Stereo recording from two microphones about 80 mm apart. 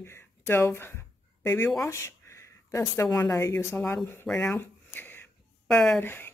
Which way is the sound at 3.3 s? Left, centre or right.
Left.